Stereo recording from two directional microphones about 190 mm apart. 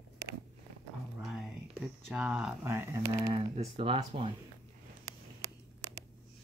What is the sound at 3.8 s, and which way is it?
Speech, 30° right (ahead or behind).